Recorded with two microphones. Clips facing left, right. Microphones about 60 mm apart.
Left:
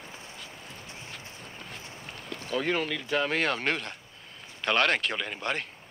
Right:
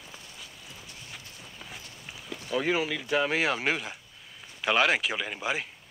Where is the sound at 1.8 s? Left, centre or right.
Left.